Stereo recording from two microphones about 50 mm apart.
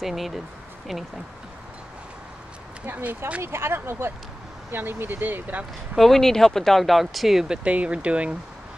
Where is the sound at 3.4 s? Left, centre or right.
Right.